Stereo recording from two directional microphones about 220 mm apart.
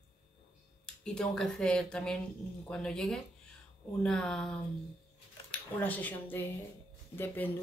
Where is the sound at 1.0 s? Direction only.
5° left (ahead or behind).